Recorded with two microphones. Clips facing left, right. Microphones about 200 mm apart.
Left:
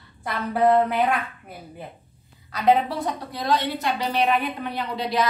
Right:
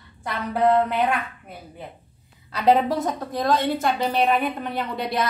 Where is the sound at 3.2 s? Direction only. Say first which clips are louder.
Right 2 dB; 50° right (ahead or behind).